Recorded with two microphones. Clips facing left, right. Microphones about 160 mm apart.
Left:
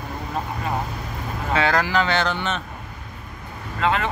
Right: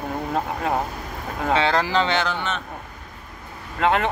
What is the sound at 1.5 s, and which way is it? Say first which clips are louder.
Speech: even; 25° right (ahead or behind).